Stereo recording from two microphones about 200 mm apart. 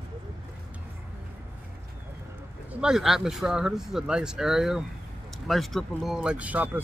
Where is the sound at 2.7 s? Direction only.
5° right (ahead or behind).